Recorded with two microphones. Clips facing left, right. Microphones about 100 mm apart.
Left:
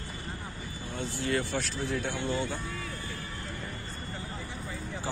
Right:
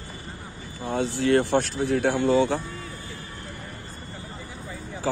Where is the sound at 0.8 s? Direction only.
85° right.